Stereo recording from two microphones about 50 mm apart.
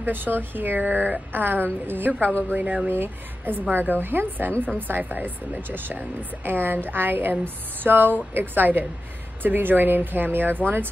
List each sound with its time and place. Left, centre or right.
0.0 s a woman's voice: right
2.9 s a woman's voice: right